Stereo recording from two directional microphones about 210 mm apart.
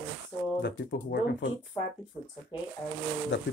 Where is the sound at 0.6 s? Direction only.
55° left (ahead or behind).